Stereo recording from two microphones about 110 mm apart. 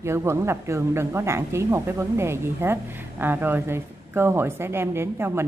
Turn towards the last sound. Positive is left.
turn(degrees=-20)  # may be behind; listen again after turning